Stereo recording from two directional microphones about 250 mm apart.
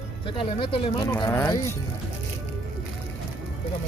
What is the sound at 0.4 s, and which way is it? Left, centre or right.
Speech, centre.